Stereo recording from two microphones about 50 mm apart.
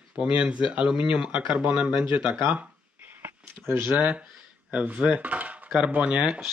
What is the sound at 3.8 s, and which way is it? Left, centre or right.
Speech, right.